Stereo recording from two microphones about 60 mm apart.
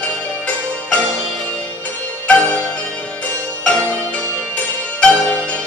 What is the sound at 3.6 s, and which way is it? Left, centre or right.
Music, centre.